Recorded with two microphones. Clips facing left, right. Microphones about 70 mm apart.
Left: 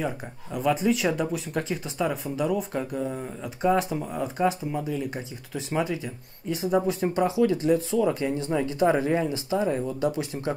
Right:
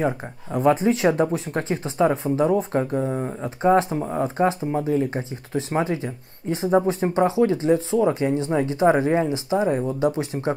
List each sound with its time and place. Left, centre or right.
0.0 s speech: right